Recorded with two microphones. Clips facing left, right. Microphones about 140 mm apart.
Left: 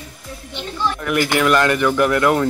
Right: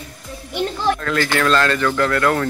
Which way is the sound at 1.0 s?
15° left (ahead or behind).